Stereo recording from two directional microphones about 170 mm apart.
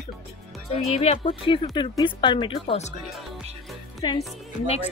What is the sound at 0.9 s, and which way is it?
Speech, 35° left (ahead or behind).